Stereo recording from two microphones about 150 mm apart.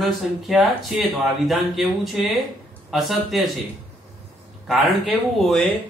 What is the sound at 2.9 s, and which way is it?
Speech, centre (ahead or behind).